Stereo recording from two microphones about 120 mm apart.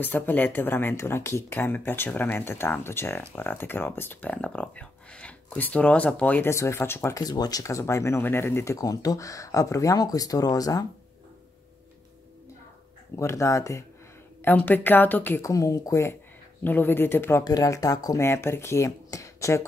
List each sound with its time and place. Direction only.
0.0 s speech: 15° left (ahead or behind); by 10.9 s 30° left (ahead or behind)
13.1 s speech: 25° left (ahead or behind)
14.4 s speech: 15° left (ahead or behind)
15.5 s speech: 25° left (ahead or behind)
18.2 s speech: 20° left (ahead or behind)